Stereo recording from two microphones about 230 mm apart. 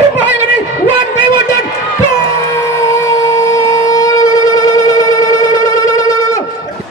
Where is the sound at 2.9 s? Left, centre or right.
Centre.